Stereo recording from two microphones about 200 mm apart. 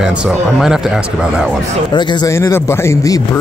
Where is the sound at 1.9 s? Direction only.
20° left (ahead or behind).